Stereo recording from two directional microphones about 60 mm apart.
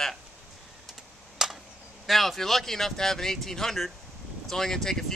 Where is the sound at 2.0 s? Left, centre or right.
Centre.